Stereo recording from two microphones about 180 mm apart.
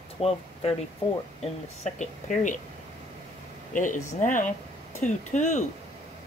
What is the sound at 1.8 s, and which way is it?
Speech, 40° left (ahead or behind).